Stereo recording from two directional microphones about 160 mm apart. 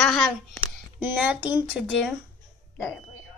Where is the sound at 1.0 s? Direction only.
10° right (ahead or behind).